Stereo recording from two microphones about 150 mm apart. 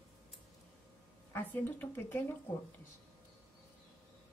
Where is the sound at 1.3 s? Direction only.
10° left (ahead or behind).